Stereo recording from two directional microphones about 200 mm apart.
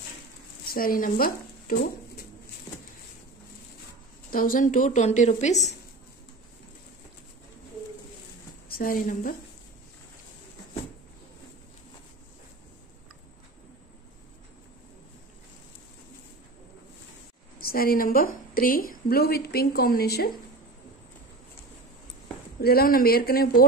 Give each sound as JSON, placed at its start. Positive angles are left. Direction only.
{"t": 0.7, "sound": "a woman's voice", "side_deg": 45}
{"t": 4.3, "sound": "a woman's voice", "side_deg": 45}
{"t": 8.6, "sound": "a woman's voice", "side_deg": 45}
{"t": 17.6, "sound": "a woman's voice", "side_deg": 50}
{"t": 22.6, "sound": "a woman's voice", "side_deg": 50}